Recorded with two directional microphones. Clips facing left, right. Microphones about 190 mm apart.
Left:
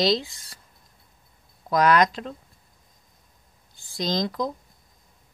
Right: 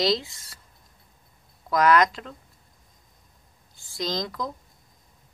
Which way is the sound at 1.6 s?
30° left (ahead or behind).